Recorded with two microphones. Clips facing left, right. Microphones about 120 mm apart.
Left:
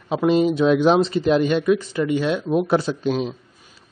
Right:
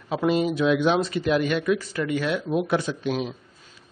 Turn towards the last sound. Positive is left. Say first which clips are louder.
# left 4 dB
turn(degrees=30)  # may be behind; listen again after turning